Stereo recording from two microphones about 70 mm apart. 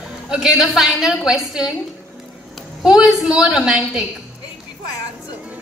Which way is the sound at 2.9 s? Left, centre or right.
Centre.